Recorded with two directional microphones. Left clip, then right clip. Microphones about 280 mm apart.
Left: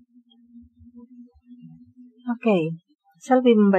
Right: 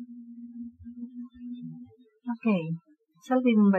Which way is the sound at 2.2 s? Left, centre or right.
Left.